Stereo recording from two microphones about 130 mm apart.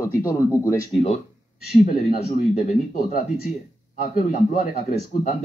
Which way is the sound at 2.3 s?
75° left (ahead or behind).